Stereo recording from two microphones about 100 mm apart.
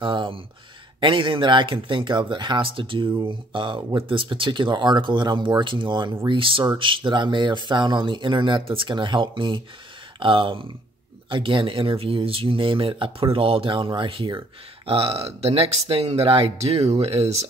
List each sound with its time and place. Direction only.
0.0 s speech: 55° right (ahead or behind); by 17.5 s 90° right